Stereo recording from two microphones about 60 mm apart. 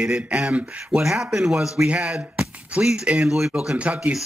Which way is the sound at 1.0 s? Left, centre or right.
Centre.